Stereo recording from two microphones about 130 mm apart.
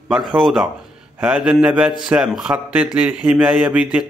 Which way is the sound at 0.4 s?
5° right (ahead or behind).